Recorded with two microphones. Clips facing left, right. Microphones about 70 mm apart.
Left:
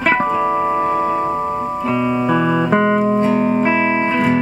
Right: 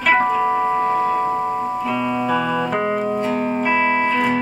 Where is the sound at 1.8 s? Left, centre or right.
Centre.